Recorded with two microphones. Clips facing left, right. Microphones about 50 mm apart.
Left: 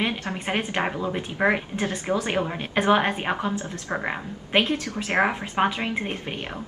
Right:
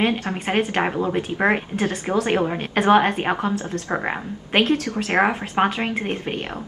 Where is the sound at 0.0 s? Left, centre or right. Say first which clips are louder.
Right 5 dB; right.